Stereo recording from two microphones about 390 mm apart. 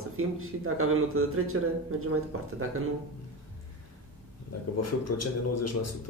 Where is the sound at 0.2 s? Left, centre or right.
Right.